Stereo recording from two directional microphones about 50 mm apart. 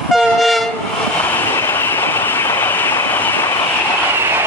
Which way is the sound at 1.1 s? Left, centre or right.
Left.